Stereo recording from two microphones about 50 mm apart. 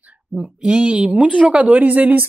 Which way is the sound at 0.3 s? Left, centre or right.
Right.